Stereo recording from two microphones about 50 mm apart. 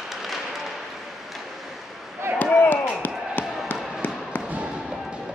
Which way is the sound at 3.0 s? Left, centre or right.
Left.